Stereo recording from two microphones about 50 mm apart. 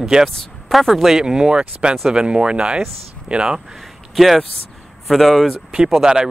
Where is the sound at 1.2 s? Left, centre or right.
Centre.